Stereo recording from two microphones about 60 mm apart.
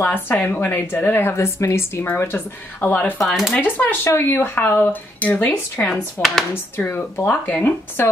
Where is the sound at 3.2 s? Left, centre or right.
Centre.